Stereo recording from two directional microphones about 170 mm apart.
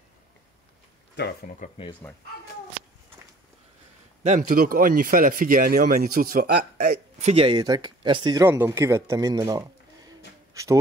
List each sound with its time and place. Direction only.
1.1 s speech: 65° left (ahead or behind)
2.0 s speech: 10° left (ahead or behind)
4.2 s speech: 45° right (ahead or behind)
7.2 s speech: 40° right (ahead or behind); by 10.8 s 20° right (ahead or behind)